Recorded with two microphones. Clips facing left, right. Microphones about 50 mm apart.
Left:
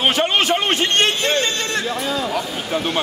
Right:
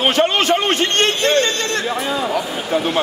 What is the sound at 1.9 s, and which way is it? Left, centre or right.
Speech, centre.